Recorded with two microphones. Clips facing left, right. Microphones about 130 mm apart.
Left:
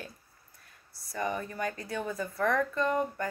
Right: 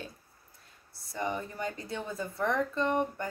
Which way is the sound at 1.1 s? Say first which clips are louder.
Left 1 dB; 20° right (ahead or behind).